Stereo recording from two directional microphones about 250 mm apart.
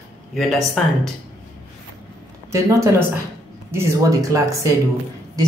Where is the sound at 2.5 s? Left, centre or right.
Centre.